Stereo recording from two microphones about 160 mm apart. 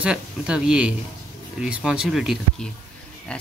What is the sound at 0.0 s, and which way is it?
Speech, 5° right (ahead or behind).